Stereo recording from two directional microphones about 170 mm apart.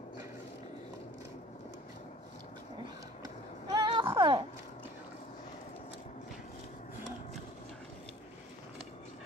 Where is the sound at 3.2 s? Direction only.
25° right (ahead or behind).